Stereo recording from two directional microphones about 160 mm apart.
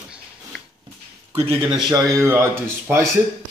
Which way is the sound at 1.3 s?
40° right (ahead or behind).